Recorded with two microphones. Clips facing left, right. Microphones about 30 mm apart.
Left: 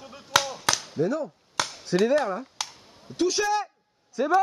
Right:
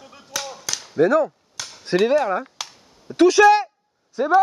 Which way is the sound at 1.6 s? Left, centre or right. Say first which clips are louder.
Left 7 dB; left.